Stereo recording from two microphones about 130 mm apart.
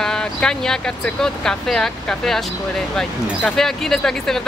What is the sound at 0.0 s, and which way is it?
Speech, 5° left (ahead or behind).